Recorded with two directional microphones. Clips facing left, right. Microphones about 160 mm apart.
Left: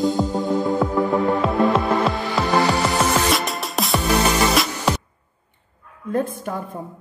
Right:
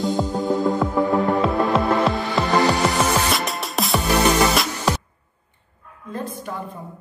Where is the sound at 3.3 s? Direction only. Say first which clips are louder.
Left 2 dB; centre (ahead or behind).